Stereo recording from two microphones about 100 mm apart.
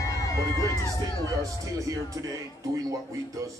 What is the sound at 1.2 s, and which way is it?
Speech, 35° right (ahead or behind).